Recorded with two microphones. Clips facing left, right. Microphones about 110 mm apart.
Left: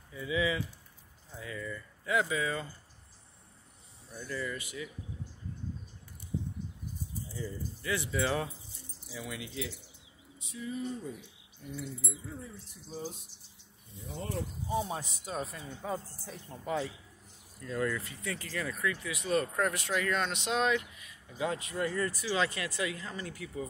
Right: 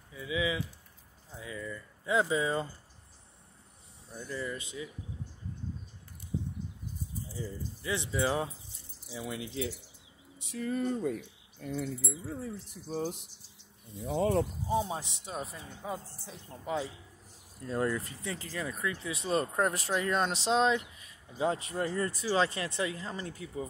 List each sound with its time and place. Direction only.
0.1 s a man's voice: 10° right (ahead or behind)
2.1 s speech: 25° right (ahead or behind)
4.1 s speech: 15° right (ahead or behind)
7.3 s speech: 20° right (ahead or behind)
9.1 s speech: 30° right (ahead or behind)
10.4 s speech: 65° right (ahead or behind)
11.7 s speech: 45° right (ahead or behind)
12.9 s speech: 65° right (ahead or behind)
14.0 s speech: 90° right
14.7 s speech: 20° right (ahead or behind)
15.5 s a man's voice: 10° right (ahead or behind)
17.6 s speech: 30° right (ahead or behind)
18.2 s speech: 25° right (ahead or behind)
19.0 s speech: 30° right (ahead or behind)